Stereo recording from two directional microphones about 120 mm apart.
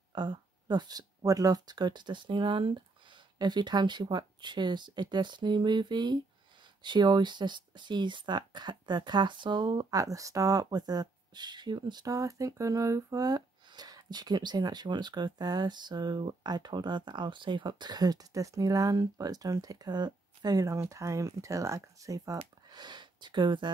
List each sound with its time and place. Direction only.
0.1 s speech: 40° right (ahead or behind)